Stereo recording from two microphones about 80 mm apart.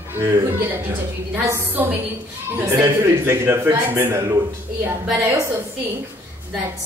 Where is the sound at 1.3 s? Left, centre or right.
Right.